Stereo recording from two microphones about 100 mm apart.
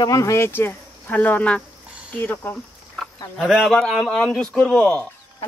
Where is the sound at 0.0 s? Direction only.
35° left (ahead or behind); by 1.6 s 15° left (ahead or behind).